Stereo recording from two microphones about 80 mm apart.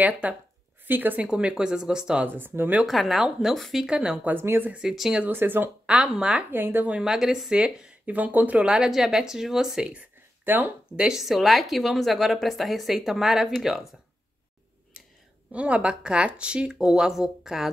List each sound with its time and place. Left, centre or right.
0.0 s speech: centre
2.2 s speech: right
2.9 s speech: centre
4.3 s speech: right
4.7 s speech: centre
5.2 s speech: right
5.9 s speech: centre
6.5 s speech: right
7.0 s speech: centre; by 8.6 s right
8.6 s speech: centre
10.4 s speech: right; by 13.8 s centre
15.5 s speech: centre